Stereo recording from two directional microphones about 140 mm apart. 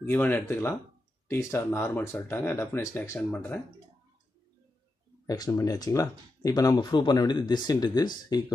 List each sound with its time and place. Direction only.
0.0 s speech: 15° left (ahead or behind)
3.2 s speech: 10° left (ahead or behind)
5.2 s speech: 25° left (ahead or behind)